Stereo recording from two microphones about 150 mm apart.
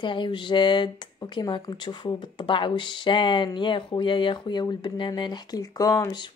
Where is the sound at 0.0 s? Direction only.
35° left (ahead or behind).